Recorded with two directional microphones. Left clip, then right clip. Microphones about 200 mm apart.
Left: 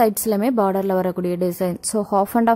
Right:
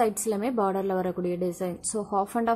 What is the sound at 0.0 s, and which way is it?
A woman's voice, 45° left (ahead or behind).